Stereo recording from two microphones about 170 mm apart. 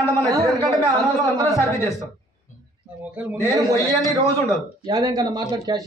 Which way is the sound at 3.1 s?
10° right (ahead or behind).